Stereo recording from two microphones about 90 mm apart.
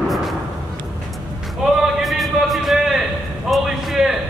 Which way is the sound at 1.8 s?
Centre (ahead or behind).